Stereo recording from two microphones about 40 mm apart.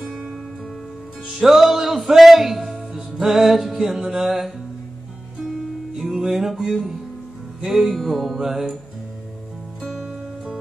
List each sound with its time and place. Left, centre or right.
1.4 s music: centre
10.0 s music: centre